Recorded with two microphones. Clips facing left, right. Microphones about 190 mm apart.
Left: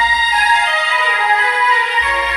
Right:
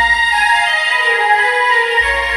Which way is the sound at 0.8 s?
30° right (ahead or behind).